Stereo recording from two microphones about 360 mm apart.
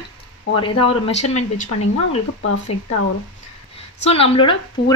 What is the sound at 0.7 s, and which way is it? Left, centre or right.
Speech, centre.